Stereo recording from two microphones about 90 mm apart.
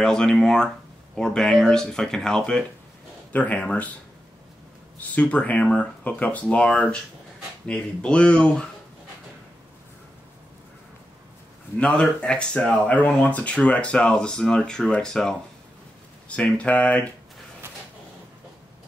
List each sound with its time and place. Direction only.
0.0 s speech: 5° left (ahead or behind)
5.1 s speech: 15° left (ahead or behind)
11.8 s speech: 10° left (ahead or behind)